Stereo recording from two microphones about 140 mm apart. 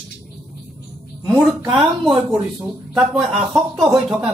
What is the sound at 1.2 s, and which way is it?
Speech, 20° right (ahead or behind).